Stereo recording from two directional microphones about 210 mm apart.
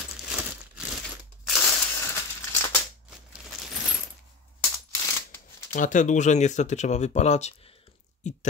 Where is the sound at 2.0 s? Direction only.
10° left (ahead or behind).